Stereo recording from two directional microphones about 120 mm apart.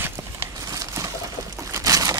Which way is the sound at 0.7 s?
30° right (ahead or behind).